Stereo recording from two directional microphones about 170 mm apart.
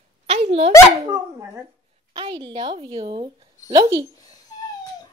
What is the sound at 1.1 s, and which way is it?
Speech, 20° right (ahead or behind).